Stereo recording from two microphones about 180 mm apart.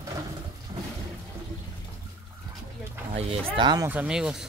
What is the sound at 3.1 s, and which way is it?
Speech, 25° right (ahead or behind).